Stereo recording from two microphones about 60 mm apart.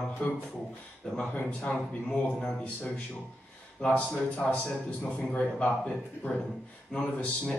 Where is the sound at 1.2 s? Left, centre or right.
Left.